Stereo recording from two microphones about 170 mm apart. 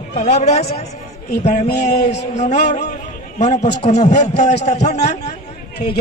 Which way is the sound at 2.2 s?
45° left (ahead or behind).